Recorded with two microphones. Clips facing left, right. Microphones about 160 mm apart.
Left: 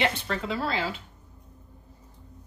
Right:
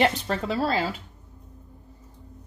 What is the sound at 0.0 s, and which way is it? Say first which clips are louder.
Speech: right 4 dB; 35° right (ahead or behind).